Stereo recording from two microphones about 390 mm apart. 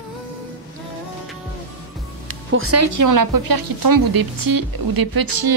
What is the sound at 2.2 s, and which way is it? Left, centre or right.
Speech, right.